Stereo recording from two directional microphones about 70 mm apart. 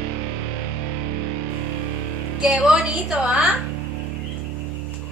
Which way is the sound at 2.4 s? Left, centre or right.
Centre.